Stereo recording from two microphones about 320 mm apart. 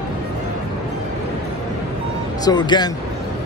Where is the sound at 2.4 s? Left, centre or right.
Centre.